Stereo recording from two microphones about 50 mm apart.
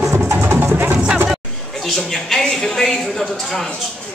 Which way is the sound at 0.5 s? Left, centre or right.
Right.